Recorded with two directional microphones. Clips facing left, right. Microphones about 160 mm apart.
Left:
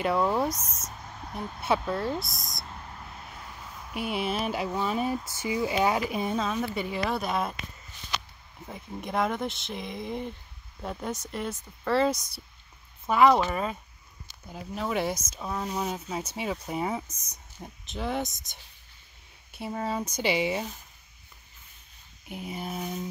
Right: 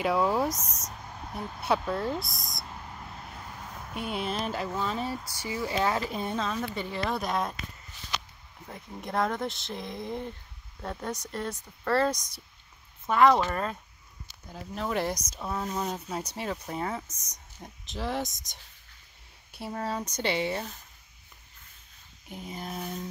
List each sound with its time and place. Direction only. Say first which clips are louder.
0.0 s speech: even; centre (ahead or behind)
3.9 s speech: left 2 dB; 5° left (ahead or behind)
8.6 s speech: left 2 dB; 5° left (ahead or behind)
22.3 s speech: left 3 dB; 10° left (ahead or behind)